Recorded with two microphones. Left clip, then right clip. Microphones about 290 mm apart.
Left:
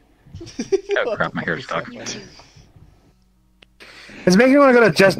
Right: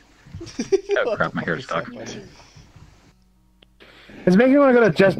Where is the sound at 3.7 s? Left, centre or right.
Centre.